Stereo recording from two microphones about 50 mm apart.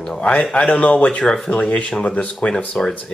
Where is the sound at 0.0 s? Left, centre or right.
Left.